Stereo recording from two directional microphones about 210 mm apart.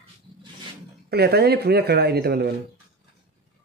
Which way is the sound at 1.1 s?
50° right (ahead or behind).